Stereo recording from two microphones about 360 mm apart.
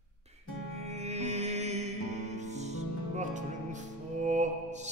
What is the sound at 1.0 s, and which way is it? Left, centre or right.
Music, centre.